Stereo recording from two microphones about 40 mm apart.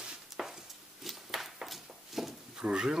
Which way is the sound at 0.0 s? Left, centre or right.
Centre.